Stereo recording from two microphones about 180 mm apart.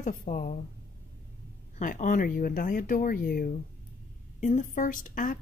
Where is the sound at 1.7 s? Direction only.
45° left (ahead or behind).